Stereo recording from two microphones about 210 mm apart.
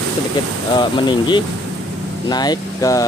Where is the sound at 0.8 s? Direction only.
20° left (ahead or behind).